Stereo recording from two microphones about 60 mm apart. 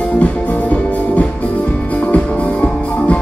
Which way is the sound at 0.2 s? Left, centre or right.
Left.